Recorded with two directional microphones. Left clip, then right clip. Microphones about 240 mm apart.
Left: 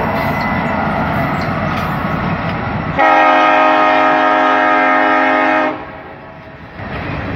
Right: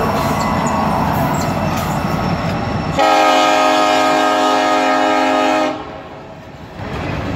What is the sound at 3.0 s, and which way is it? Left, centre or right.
Train, right.